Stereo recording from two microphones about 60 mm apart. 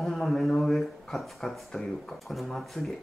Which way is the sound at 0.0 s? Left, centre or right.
Centre.